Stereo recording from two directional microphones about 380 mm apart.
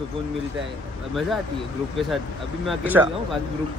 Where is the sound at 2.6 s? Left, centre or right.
Centre.